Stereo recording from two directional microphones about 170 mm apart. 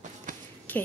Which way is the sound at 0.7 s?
10° left (ahead or behind).